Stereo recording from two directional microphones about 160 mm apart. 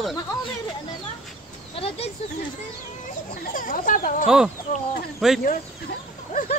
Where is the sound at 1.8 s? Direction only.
35° left (ahead or behind).